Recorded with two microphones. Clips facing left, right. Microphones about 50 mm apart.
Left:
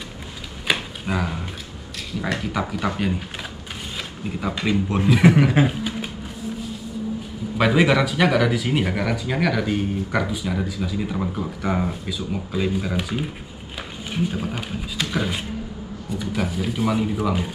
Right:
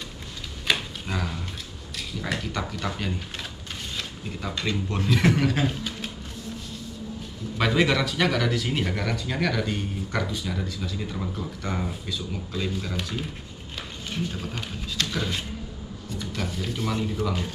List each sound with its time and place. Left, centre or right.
0.7 s a sound: centre
2.2 s speech: centre
4.3 s speech: centre
7.5 s speech: centre